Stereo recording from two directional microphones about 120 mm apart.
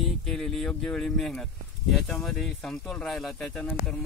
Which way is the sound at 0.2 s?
Centre (ahead or behind).